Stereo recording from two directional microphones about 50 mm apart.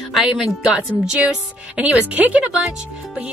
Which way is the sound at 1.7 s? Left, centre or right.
Right.